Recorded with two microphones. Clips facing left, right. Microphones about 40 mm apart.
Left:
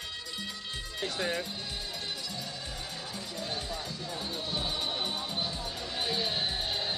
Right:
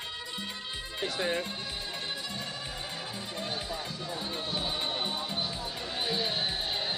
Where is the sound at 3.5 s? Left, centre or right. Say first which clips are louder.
Even; centre.